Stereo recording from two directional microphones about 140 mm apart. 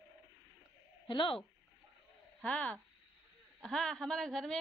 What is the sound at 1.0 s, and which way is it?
Speech, 35° left (ahead or behind).